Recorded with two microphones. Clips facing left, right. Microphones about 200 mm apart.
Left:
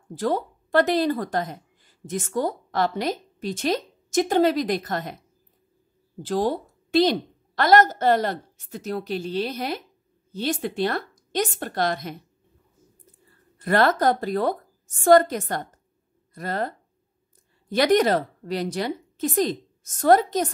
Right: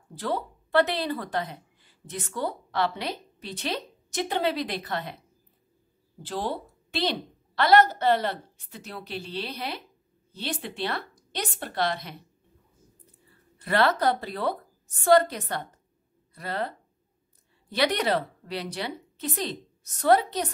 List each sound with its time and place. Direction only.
0.2 s speech: 45° left (ahead or behind)
6.2 s a woman's voice: 45° left (ahead or behind)
13.6 s a woman's voice: 45° left (ahead or behind)